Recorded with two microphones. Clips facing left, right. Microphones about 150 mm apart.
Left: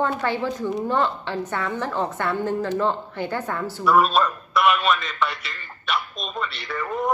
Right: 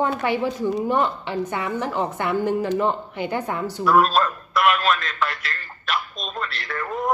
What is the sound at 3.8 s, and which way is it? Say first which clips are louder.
A man's voice: right 1 dB; centre (ahead or behind).